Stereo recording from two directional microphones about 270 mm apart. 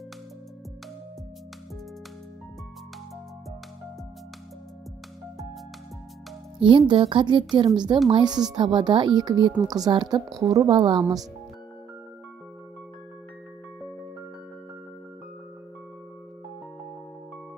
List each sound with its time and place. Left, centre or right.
6.6 s a woman's voice: centre